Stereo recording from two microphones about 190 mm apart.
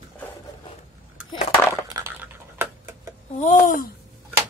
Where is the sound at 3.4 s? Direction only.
40° left (ahead or behind).